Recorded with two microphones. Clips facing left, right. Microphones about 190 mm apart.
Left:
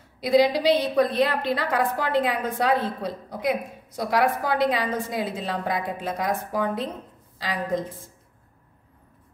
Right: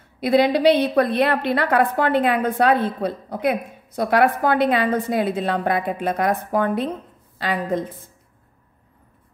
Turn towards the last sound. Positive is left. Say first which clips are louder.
# right 4 dB
turn(degrees=-60)  # may be behind; listen again after turning